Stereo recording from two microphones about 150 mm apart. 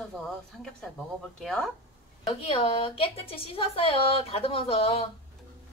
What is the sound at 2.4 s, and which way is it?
Speech, 35° left (ahead or behind).